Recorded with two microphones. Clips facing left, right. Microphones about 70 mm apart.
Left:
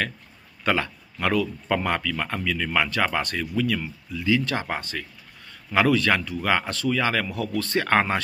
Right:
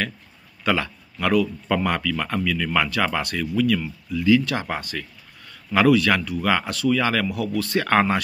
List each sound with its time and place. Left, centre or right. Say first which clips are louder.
0.7 s speech: right 1 dB; left